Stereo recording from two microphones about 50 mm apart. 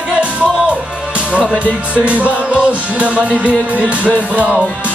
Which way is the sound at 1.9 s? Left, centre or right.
Right.